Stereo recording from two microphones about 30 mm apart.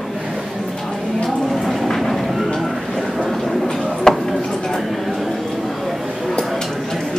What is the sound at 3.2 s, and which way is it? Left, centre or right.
Train, centre.